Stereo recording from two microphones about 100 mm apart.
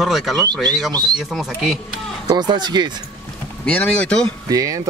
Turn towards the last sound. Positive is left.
turn(degrees=-35)  # may be behind; listen again after turning